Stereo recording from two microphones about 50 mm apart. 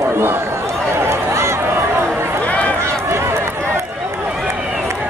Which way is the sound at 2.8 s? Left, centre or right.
Right.